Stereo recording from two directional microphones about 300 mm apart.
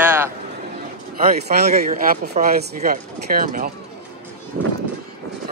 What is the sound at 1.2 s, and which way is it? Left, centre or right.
Speech, right.